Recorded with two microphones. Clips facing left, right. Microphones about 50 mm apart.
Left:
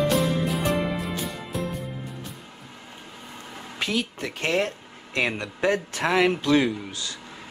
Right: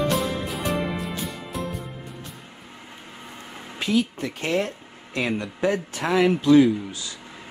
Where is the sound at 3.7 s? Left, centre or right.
Left.